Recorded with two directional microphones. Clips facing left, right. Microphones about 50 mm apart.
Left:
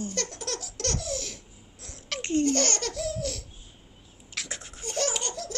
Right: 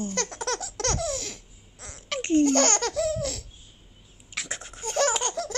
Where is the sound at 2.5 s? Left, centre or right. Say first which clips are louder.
Right 5 dB; right.